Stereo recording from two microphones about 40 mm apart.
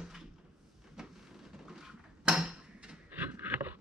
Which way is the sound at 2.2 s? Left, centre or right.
Centre.